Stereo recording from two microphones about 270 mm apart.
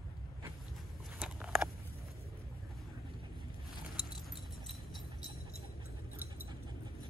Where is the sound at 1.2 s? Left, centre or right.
Centre.